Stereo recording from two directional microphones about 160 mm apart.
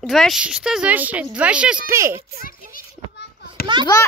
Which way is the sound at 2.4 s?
65° left (ahead or behind).